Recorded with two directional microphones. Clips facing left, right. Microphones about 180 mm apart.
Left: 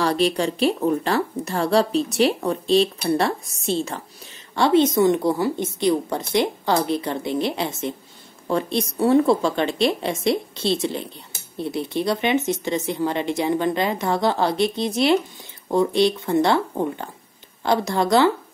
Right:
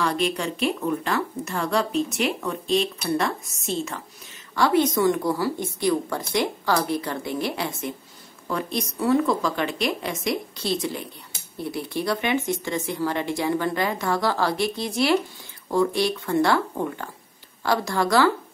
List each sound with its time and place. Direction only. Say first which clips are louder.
0.0 s a woman's voice: left 4 dB; 35° left (ahead or behind)